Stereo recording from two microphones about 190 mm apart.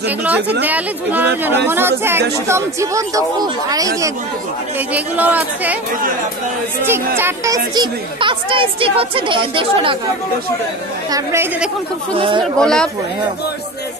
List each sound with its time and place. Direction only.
0.6 s speech: 10° right (ahead or behind)
4.7 s speech: 10° right (ahead or behind)
6.8 s speech: 10° right (ahead or behind)
11.1 s speech: 15° right (ahead or behind)
12.5 s speech: 5° left (ahead or behind)